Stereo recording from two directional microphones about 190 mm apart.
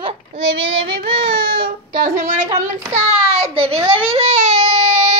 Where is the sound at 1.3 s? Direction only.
55° right (ahead or behind).